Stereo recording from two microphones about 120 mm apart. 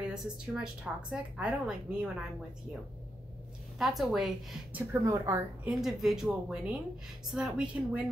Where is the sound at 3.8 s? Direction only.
Centre (ahead or behind).